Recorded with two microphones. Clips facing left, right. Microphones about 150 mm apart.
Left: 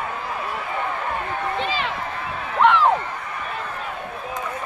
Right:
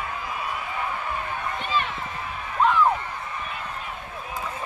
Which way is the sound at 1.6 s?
90° left.